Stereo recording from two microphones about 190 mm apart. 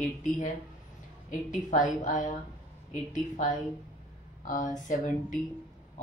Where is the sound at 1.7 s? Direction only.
40° left (ahead or behind).